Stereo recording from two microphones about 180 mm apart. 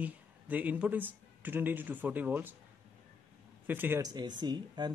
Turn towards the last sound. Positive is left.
turn(degrees=-25)  # may be behind; listen again after turning